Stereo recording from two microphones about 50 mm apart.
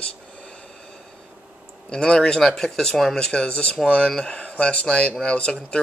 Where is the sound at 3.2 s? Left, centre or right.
Left.